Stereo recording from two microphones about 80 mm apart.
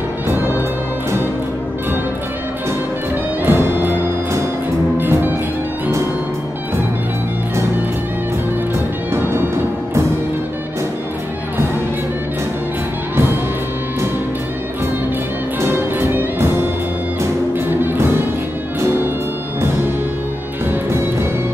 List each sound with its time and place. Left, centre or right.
0.3 s music: right
3.4 s music: right
13.1 s music: right
15.6 s music: right
17.6 s music: right
20.6 s music: right